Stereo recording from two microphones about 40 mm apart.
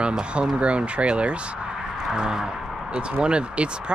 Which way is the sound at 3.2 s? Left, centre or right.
Right.